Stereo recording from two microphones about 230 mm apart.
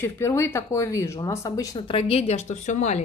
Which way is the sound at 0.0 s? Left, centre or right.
Centre.